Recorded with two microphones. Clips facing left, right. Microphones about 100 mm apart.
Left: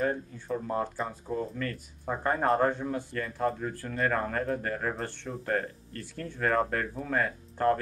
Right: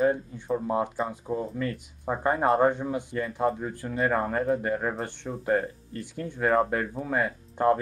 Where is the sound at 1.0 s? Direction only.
Centre (ahead or behind).